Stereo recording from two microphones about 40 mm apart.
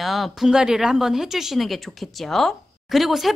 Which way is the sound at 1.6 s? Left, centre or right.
Centre.